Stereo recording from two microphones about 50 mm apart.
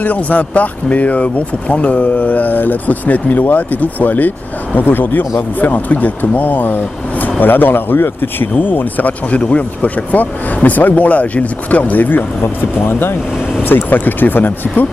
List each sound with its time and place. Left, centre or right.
0.0 s speech: left